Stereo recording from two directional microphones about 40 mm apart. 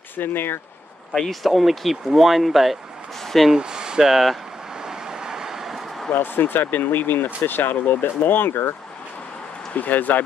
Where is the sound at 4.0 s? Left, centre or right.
Centre.